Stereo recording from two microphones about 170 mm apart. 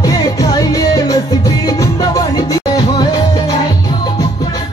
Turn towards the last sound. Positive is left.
turn(degrees=25)  # may be behind; listen again after turning